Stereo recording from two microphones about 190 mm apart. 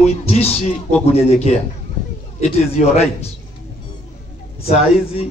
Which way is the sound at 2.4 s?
35° left (ahead or behind).